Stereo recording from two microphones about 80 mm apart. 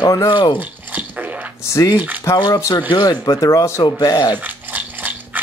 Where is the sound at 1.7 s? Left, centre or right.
Left.